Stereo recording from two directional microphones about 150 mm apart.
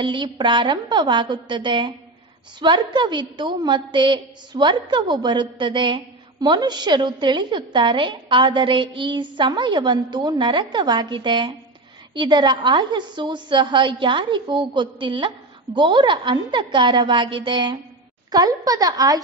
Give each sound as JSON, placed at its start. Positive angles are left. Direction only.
{"t": 0.0, "sound": "a woman's voice", "side_deg": -30}